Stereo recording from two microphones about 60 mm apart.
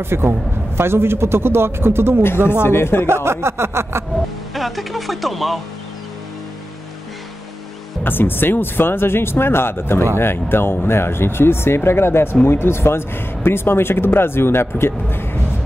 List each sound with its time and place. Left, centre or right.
0.0 s a man's voice: right
2.3 s speech: right
2.6 s a man's voice: left
3.3 s a man's voice: right
4.6 s speech: centre
8.0 s a man's voice: left